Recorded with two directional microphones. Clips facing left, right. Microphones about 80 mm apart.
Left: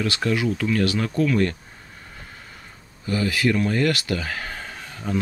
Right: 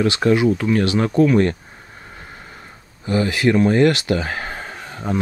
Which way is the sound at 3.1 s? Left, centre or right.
Right.